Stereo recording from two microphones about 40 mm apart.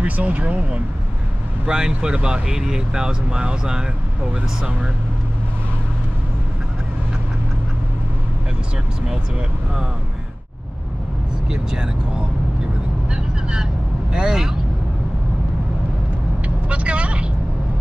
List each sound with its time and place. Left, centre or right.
0.0 s speech: right
1.7 s speech: right
11.4 s speech: centre
13.1 s vehicle: centre
14.1 s speech: centre
16.4 s vehicle: right